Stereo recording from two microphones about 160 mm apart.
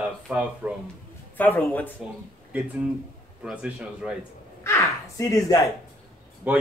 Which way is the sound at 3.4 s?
5° right (ahead or behind).